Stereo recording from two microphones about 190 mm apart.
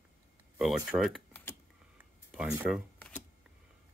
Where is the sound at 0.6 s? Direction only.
Centre (ahead or behind).